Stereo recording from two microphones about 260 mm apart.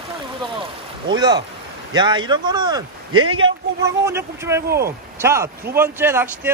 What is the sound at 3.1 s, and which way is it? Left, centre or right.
Speech, right.